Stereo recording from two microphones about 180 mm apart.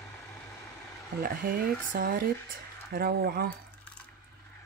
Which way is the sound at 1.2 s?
55° right (ahead or behind).